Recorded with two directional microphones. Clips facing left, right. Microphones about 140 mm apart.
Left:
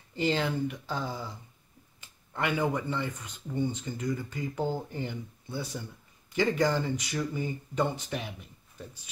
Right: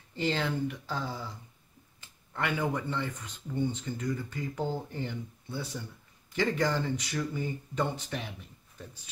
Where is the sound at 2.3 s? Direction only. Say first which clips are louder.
Left 2 dB; 15° left (ahead or behind).